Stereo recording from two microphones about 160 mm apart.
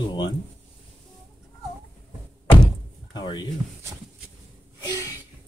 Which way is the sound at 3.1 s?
25° left (ahead or behind).